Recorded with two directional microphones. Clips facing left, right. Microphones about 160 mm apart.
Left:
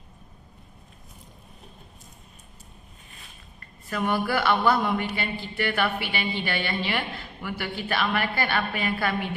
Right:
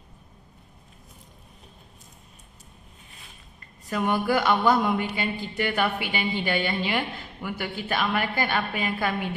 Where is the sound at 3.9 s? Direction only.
15° right (ahead or behind).